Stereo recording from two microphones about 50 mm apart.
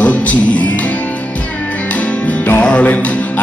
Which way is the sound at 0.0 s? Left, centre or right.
Left.